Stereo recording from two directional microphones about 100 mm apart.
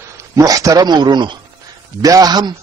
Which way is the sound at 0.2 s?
35° right (ahead or behind).